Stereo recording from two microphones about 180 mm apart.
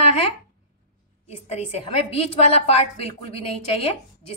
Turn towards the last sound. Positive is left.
turn(degrees=35)  # may be behind; listen again after turning